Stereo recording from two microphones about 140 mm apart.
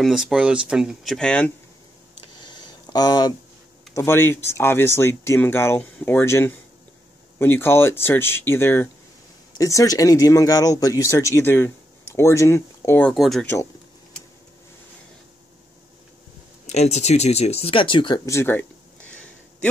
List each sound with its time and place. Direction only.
0.0 s speech: 5° right (ahead or behind)
2.4 s a sound: 30° left (ahead or behind)
3.9 s speech: 20° left (ahead or behind)
13.1 s speech: centre (ahead or behind)
16.6 s speech: 55° left (ahead or behind); by 18.7 s 15° left (ahead or behind)